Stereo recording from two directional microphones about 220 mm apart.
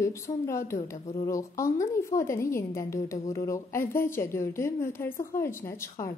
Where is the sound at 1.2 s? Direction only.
15° left (ahead or behind).